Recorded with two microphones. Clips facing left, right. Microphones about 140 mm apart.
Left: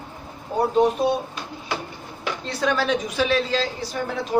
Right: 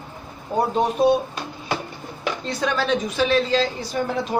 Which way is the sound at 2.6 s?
10° left (ahead or behind).